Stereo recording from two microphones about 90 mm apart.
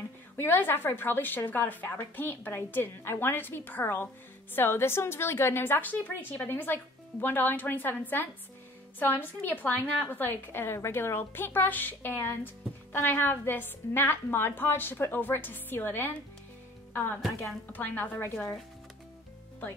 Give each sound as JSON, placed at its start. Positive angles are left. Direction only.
{"t": 0.4, "sound": "a woman's voice", "side_deg": 25}
{"t": 17.7, "sound": "a woman's voice", "side_deg": 20}